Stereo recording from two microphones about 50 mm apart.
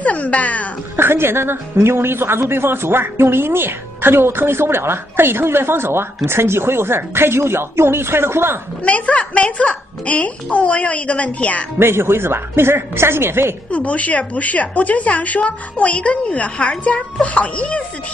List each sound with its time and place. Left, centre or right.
0.0 s speech: left
0.9 s a woman's voice: right
8.8 s a woman's voice: left
11.8 s a woman's voice: right
13.7 s a woman's voice: left